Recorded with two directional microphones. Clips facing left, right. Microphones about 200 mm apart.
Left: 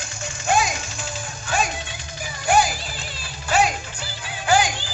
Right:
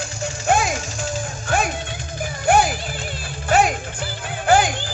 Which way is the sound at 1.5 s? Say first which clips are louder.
Right 2 dB; 55° right (ahead or behind).